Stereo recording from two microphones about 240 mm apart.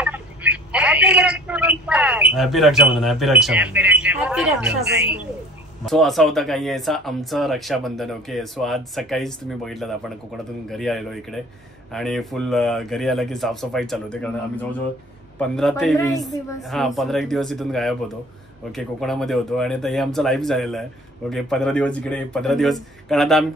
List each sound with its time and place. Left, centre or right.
0.0 s telephone: centre
2.3 s a man's voice: centre
16.0 s a woman's voice: centre
16.6 s speech: centre